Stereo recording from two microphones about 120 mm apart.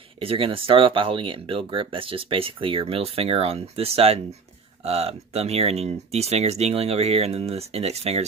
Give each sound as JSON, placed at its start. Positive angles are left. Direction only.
{"t": 0.2, "sound": "speech", "side_deg": -50}